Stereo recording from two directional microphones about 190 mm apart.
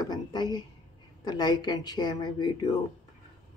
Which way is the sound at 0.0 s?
20° left (ahead or behind).